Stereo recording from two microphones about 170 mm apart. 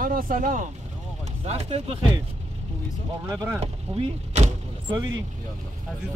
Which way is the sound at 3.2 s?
15° right (ahead or behind).